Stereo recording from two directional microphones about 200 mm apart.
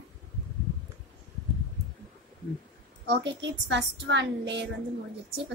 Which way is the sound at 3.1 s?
60° right (ahead or behind).